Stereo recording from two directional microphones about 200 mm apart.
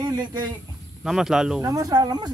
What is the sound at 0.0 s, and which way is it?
Speech, 20° right (ahead or behind).